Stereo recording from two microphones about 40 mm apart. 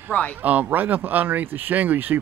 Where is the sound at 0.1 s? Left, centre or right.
Left.